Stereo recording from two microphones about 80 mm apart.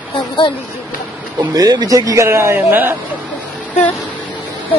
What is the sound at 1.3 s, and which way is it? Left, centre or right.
Speech, right.